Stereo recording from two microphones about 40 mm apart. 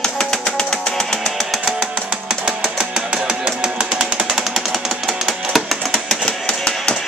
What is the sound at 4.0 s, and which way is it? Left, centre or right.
Chainsaw, centre.